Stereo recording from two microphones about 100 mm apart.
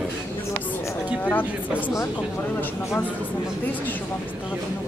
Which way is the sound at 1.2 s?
15° left (ahead or behind).